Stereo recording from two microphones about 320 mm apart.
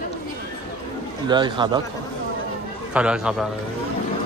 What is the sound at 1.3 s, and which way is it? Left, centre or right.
Speech, centre.